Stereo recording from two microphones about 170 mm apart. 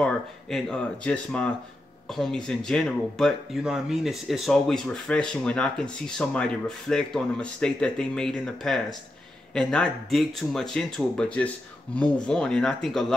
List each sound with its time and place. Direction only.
0.0 s speech: 5° left (ahead or behind)